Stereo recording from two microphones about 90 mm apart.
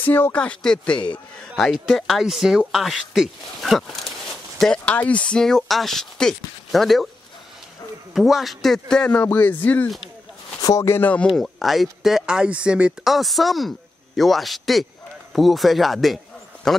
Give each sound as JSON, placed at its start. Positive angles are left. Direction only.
{"t": 0.0, "sound": "speech", "side_deg": 20}
{"t": 4.9, "sound": "speech", "side_deg": 15}
{"t": 8.1, "sound": "speech", "side_deg": 0}
{"t": 9.1, "sound": "speech", "side_deg": 20}
{"t": 10.6, "sound": "speech", "side_deg": 35}
{"t": 11.0, "sound": "speech", "side_deg": 20}
{"t": 11.3, "sound": "speech", "side_deg": 0}
{"t": 13.0, "sound": "speech", "side_deg": 0}